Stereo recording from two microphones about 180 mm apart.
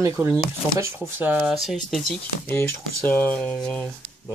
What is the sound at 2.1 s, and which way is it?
Speech, 10° left (ahead or behind).